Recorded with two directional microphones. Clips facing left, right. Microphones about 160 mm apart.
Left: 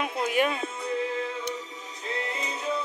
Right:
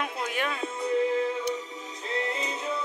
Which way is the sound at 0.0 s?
10° left (ahead or behind).